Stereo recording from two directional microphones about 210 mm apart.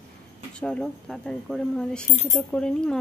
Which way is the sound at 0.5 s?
5° left (ahead or behind).